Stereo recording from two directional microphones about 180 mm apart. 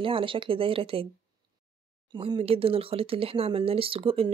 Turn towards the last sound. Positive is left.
turn(degrees=-30)  # may be behind; listen again after turning